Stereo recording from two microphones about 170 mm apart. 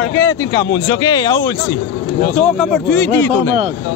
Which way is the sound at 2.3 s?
Centre (ahead or behind).